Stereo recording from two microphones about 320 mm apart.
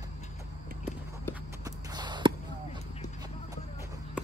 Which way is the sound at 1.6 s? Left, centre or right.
Centre.